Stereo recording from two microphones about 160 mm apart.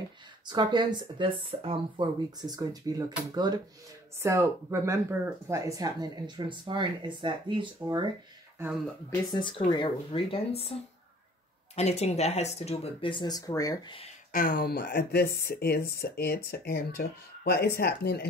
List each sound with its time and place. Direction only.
0.5 s speech: 25° right (ahead or behind)
9.3 s speech: 30° left (ahead or behind)
14.3 s speech: 65° left (ahead or behind)